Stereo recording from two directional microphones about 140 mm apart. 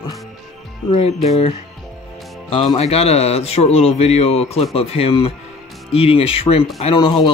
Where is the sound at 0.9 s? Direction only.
50° left (ahead or behind).